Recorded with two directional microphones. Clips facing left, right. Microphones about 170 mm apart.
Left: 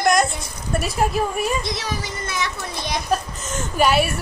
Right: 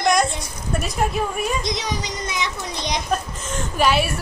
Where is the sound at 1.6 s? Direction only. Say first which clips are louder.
Right 1 dB; 15° right (ahead or behind).